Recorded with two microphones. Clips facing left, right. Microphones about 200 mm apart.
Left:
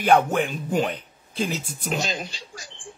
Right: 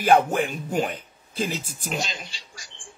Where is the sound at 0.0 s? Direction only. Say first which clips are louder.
Even; 10° right (ahead or behind).